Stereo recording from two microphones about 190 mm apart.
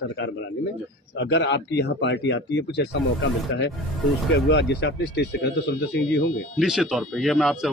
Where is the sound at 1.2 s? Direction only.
65° left (ahead or behind).